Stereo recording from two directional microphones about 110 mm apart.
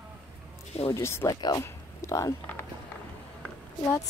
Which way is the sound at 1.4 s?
30° left (ahead or behind).